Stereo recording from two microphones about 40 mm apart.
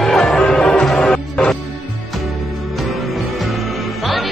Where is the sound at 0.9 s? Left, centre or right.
Centre.